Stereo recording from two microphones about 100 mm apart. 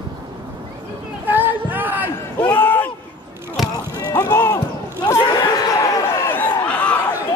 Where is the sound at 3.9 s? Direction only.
40° left (ahead or behind).